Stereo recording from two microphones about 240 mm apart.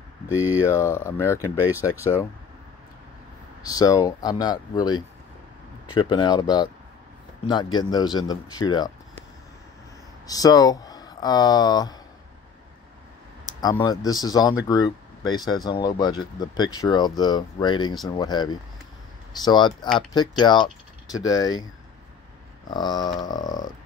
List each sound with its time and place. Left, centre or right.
0.4 s speech: centre
0.7 s speech: centre
3.6 s speech: centre
10.2 s speech: centre
13.6 s speech: centre
22.7 s speech: centre